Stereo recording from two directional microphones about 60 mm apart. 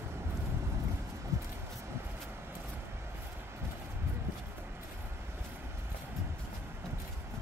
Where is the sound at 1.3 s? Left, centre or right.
Right.